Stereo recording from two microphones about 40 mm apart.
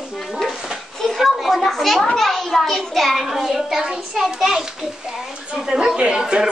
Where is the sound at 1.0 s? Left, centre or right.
Centre.